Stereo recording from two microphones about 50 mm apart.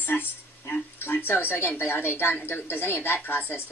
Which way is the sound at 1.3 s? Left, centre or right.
Left.